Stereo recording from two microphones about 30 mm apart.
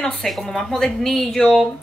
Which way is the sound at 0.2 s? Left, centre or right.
Centre.